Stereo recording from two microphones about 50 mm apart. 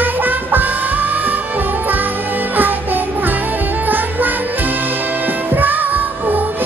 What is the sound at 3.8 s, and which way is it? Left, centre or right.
Music, right.